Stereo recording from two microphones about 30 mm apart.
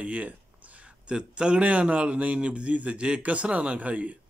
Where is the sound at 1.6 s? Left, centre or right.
Right.